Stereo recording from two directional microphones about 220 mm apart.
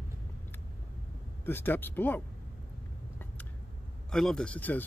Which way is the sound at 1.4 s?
10° left (ahead or behind).